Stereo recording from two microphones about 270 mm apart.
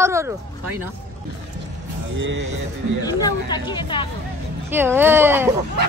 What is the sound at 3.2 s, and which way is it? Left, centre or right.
Speech, centre.